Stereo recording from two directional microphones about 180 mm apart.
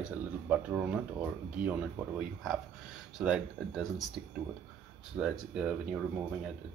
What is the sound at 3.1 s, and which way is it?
Speech, 5° right (ahead or behind).